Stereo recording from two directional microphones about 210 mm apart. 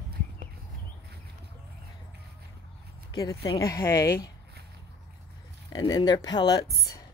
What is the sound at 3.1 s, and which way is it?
Speech, 15° left (ahead or behind).